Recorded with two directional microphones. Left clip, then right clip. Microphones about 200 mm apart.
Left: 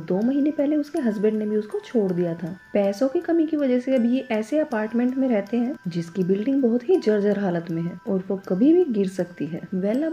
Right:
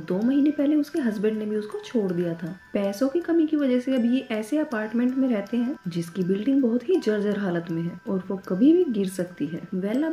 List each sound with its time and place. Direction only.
0.2 s speech: 20° left (ahead or behind)